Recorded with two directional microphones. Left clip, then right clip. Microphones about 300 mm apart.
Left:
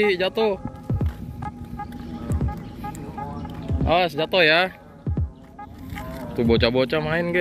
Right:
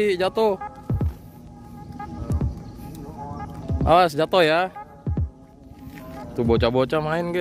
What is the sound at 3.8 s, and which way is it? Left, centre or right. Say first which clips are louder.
Speech: right 4 dB; right.